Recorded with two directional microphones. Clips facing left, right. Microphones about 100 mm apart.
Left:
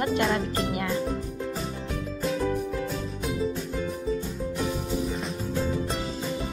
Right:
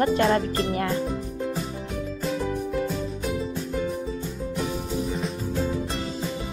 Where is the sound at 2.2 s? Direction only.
Centre (ahead or behind).